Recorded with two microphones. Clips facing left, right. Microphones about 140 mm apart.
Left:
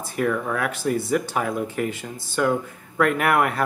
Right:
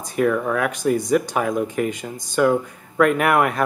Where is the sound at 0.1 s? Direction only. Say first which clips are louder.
Right 4 dB; 15° right (ahead or behind).